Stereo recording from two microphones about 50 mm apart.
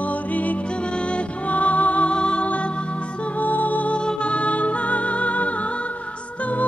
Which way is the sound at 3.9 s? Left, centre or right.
Centre.